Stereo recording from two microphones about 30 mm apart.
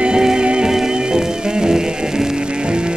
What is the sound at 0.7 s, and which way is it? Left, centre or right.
Music, centre.